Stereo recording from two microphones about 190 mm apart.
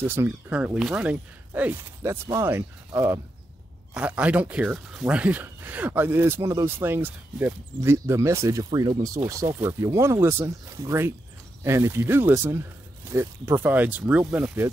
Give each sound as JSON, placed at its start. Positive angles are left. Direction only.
{"t": 0.0, "sound": "speech", "side_deg": -10}